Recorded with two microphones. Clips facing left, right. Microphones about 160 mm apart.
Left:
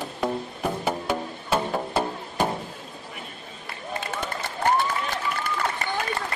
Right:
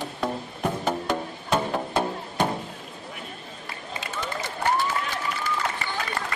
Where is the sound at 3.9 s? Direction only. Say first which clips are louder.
Left 2 dB; 55° left (ahead or behind).